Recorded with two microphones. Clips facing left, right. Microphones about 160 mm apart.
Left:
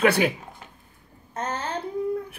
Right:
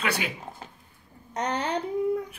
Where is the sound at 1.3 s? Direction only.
20° right (ahead or behind).